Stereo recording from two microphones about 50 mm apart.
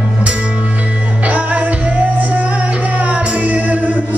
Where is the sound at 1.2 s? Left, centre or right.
Right.